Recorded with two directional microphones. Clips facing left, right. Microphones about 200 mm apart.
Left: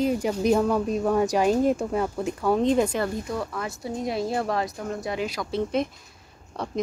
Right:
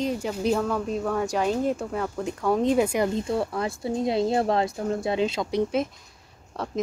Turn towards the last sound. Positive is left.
turn(degrees=0)  # may be behind; listen again after turning